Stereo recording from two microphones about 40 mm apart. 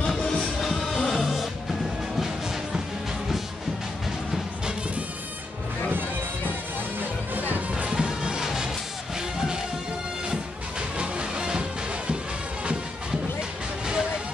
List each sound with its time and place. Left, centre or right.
0.4 s music: centre
5.9 s music: right
7.9 s music: right
11.0 s music: right
13.4 s a sound: centre